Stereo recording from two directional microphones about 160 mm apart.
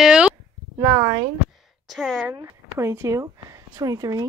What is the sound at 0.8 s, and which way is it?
Speech, 25° right (ahead or behind).